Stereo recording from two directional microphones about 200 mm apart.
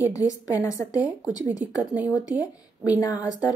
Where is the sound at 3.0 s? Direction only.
15° left (ahead or behind).